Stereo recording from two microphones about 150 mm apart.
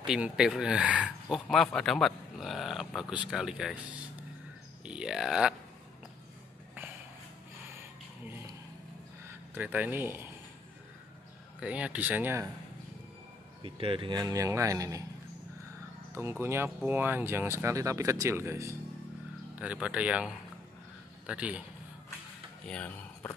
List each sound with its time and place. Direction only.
0.0 s speech: 5° right (ahead or behind)
4.8 s speech: 5° right (ahead or behind)
9.5 s speech: 10° right (ahead or behind)
11.6 s speech: 10° right (ahead or behind)
13.6 s a man's voice: 35° right (ahead or behind)
16.2 s speech: 15° right (ahead or behind)
19.6 s speech: 10° right (ahead or behind)
22.7 s speech: 10° left (ahead or behind)